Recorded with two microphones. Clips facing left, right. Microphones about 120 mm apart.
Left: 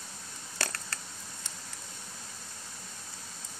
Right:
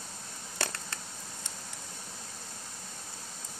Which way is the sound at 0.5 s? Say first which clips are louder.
Right 1 dB; 20° right (ahead or behind).